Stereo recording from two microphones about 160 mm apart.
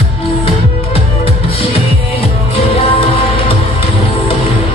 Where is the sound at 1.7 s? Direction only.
35° left (ahead or behind).